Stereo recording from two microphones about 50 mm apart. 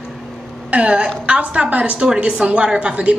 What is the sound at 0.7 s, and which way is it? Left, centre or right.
A woman's voice, right.